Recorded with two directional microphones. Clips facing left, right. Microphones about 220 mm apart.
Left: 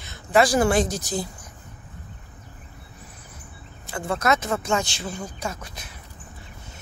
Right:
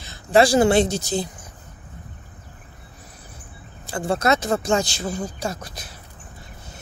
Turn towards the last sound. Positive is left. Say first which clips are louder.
# right 4 dB
turn(degrees=-35)  # may be behind; listen again after turning